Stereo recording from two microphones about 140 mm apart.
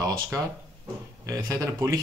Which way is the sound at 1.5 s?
25° right (ahead or behind).